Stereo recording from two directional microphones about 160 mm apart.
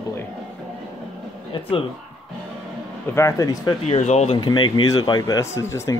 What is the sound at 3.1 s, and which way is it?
Speech, 20° left (ahead or behind).